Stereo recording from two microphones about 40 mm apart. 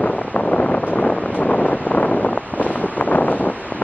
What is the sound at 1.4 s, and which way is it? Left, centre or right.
Wind noise, left.